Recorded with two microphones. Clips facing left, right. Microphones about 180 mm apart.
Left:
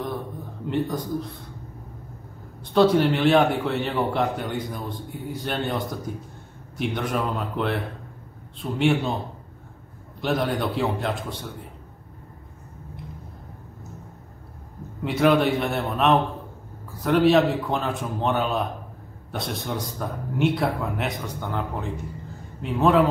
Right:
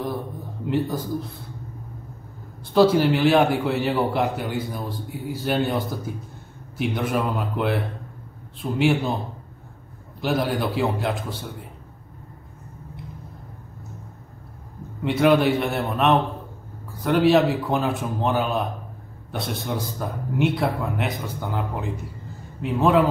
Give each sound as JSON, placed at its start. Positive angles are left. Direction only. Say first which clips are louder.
{"t": 0.7, "sound": "a man's voice", "louder": "right 2 dB", "side_deg": -5}
{"t": 2.7, "sound": "a man's voice", "louder": "right 1 dB", "side_deg": -5}
{"t": 10.2, "sound": "a man's voice", "louder": "right 1 dB", "side_deg": -5}
{"t": 15.0, "sound": "a man's voice", "louder": "right 2 dB", "side_deg": 0}